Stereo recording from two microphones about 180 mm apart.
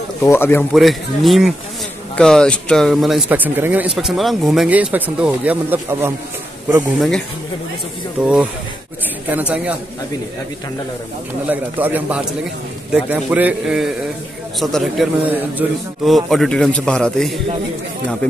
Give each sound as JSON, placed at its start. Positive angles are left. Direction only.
{"t": 0.2, "sound": "speech", "side_deg": 15}
{"t": 0.7, "sound": "speech", "side_deg": 0}
{"t": 7.0, "sound": "a man's voice", "side_deg": 5}
{"t": 11.4, "sound": "a man's voice", "side_deg": -10}